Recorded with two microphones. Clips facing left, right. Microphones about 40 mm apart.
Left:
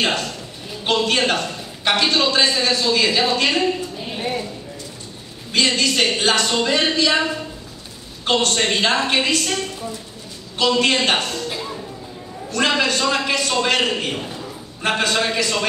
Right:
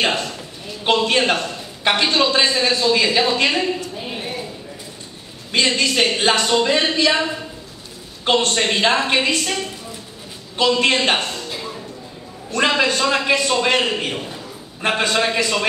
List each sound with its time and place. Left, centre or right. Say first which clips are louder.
0.0 s a man's voice: right 1 dB; centre
3.9 s a sound: right 1 dB; centre
5.5 s a man's voice: even; centre
8.3 s a man's voice: right 1 dB; centre
11.0 s a man's voice: even; centre
11.4 s a sound: left 2 dB; centre
12.4 s a man's voice: right 1 dB; centre